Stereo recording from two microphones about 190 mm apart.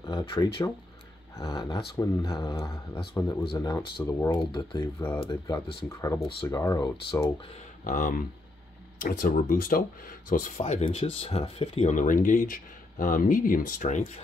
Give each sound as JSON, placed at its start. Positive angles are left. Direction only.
{"t": 0.1, "sound": "speech", "side_deg": 25}
{"t": 7.8, "sound": "speech", "side_deg": 45}
{"t": 10.6, "sound": "speech", "side_deg": 35}